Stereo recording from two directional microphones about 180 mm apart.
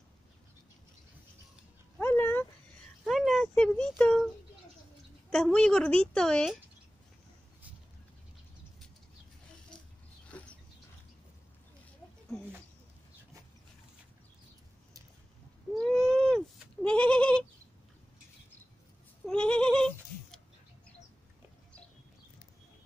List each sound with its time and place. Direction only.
2.0 s dog: 10° left (ahead or behind)
3.0 s a sound: centre (ahead or behind)
5.3 s a woman's voice: 5° left (ahead or behind)
10.3 s a sound: 5° left (ahead or behind)
15.7 s goat: centre (ahead or behind)
19.2 s goat: 5° left (ahead or behind)